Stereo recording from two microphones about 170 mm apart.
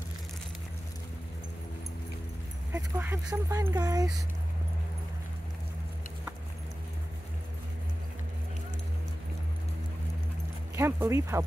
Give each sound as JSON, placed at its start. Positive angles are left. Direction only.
{"t": 2.7, "sound": "speech", "side_deg": -10}
{"t": 10.8, "sound": "speech", "side_deg": -15}